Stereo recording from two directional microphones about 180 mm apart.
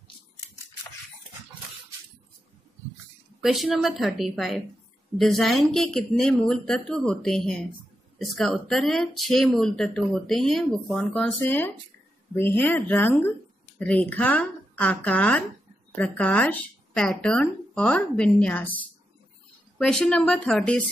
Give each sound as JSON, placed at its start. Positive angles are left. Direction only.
{"t": 3.4, "sound": "speech", "side_deg": 0}